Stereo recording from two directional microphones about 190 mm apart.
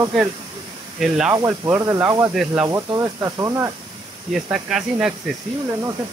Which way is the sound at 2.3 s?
5° right (ahead or behind).